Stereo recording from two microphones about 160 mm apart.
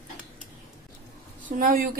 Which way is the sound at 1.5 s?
65° right (ahead or behind).